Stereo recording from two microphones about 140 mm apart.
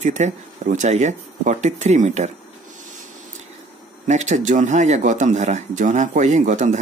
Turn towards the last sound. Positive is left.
turn(degrees=-60)  # may be behind; listen again after turning